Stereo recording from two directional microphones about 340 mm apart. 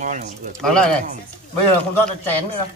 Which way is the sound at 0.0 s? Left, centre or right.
Right.